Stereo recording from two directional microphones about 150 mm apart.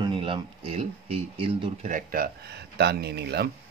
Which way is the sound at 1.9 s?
70° right (ahead or behind).